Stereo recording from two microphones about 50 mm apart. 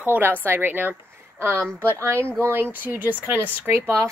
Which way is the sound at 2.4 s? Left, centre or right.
Right.